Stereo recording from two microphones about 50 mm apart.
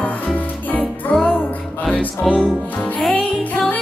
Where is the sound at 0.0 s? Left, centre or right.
Left.